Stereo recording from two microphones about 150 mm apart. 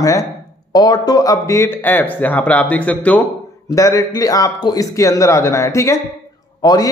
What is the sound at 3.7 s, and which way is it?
A man's voice, 20° left (ahead or behind).